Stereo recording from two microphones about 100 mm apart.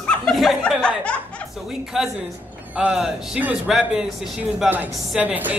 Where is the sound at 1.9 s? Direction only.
5° right (ahead or behind).